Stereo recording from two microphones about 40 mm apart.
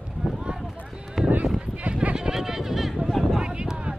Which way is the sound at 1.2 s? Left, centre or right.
Centre.